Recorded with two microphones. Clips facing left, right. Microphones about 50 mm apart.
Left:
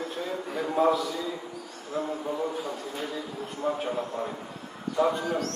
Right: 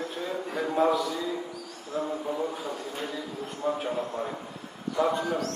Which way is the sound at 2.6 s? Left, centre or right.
Centre.